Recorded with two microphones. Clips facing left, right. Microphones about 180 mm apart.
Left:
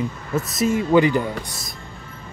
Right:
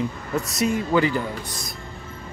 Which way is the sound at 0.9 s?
20° left (ahead or behind).